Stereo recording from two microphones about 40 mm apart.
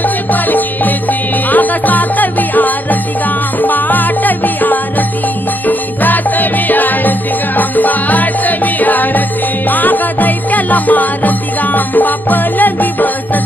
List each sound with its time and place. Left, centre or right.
0.3 s music: left
3.6 s salsa music: left
5.7 s music: left